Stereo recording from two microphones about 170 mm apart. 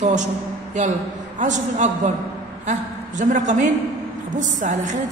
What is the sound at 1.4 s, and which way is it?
A woman's voice, 45° right (ahead or behind).